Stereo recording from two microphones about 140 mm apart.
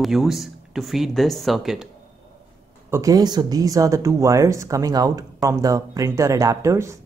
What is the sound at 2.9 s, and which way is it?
Speech, 25° right (ahead or behind).